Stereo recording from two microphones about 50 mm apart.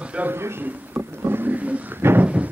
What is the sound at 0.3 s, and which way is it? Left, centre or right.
Speech, right.